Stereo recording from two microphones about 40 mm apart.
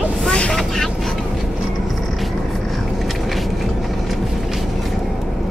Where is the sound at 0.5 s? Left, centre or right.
Centre.